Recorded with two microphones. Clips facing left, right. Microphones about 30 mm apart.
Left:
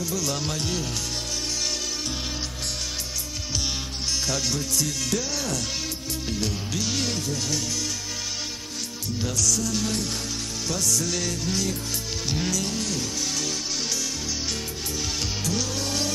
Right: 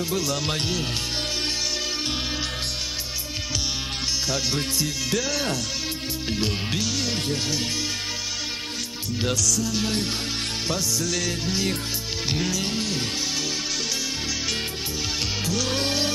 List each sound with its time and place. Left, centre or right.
4.7 s music: right
9.6 s music: right
15.6 s music: right